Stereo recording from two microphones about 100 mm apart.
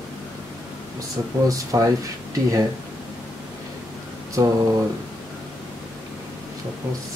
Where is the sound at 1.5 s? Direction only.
35° right (ahead or behind).